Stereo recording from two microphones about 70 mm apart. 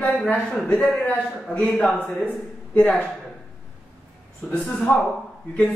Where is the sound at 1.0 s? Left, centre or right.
Left.